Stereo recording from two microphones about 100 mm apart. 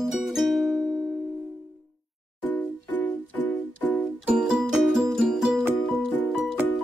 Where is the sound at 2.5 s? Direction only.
15° left (ahead or behind).